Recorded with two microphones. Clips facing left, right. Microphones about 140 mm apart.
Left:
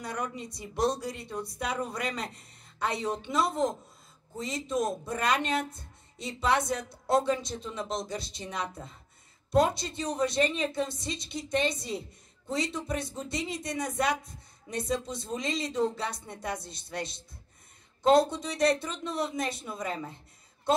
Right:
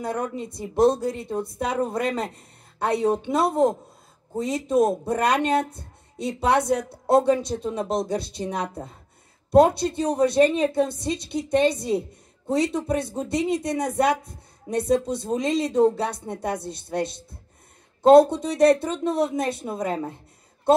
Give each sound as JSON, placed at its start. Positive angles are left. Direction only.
{"t": 0.0, "sound": "a woman's voice", "side_deg": -55}
{"t": 5.8, "sound": "a sound", "side_deg": -60}
{"t": 6.6, "sound": "a woman's voice", "side_deg": -60}